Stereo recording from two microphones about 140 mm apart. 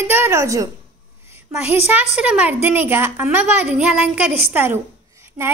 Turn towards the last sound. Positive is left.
turn(degrees=-20)  # may be behind; listen again after turning